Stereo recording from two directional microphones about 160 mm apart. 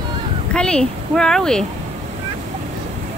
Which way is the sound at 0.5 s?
5° left (ahead or behind).